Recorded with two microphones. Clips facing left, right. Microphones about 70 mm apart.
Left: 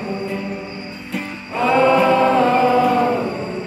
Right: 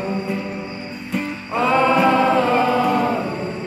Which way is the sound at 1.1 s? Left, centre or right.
Centre.